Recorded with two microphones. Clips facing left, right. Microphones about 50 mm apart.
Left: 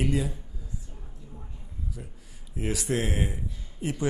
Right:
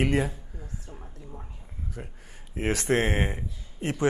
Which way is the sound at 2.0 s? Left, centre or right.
Right.